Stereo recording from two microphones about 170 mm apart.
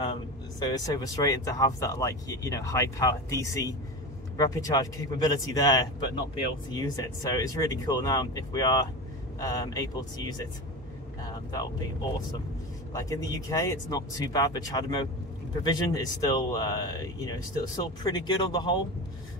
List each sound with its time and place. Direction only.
0.0 s speech: 25° left (ahead or behind)
12.9 s speech: 20° left (ahead or behind)